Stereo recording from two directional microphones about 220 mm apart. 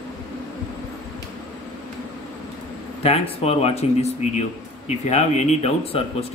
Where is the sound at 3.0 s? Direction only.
25° left (ahead or behind).